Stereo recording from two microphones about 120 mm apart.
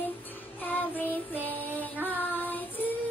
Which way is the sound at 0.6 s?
15° left (ahead or behind).